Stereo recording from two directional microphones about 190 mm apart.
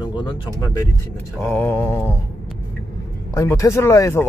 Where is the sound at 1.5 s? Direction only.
10° left (ahead or behind).